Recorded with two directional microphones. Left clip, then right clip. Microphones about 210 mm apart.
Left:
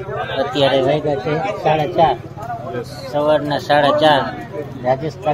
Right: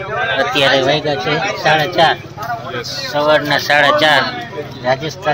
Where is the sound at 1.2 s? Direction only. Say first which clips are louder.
Right 3 dB; 15° right (ahead or behind).